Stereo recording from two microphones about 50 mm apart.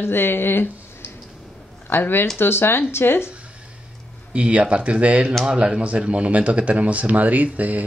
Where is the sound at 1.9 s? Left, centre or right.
Left.